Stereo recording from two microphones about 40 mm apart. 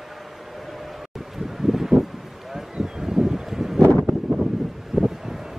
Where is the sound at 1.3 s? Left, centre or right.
Centre.